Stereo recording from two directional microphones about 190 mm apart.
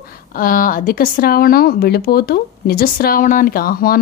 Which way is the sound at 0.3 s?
50° left (ahead or behind).